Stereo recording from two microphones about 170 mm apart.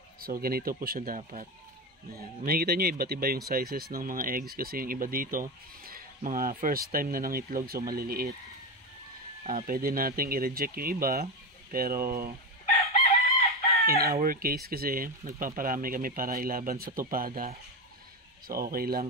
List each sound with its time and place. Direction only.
0.2 s speech: 60° right (ahead or behind)
2.4 s speech: 60° right (ahead or behind)
9.4 s speech: 40° right (ahead or behind)
9.7 s speech: 60° right (ahead or behind)
13.8 s speech: 65° right (ahead or behind)
18.5 s speech: 60° right (ahead or behind)